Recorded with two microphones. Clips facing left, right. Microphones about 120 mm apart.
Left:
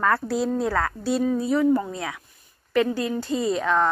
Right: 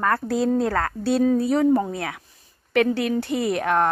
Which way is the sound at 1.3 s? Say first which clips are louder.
Right 2 dB; 70° right (ahead or behind).